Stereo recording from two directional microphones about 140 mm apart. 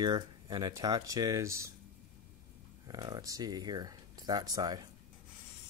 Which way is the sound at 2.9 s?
30° right (ahead or behind).